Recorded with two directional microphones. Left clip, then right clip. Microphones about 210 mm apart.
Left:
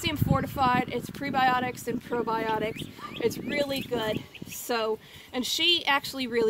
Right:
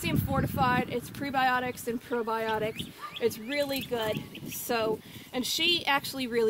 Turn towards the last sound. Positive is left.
turn(degrees=15)  # may be behind; listen again after turning